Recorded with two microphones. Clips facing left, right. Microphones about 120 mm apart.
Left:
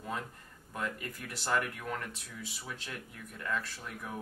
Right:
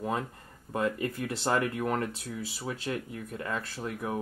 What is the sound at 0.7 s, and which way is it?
Speech, 30° right (ahead or behind).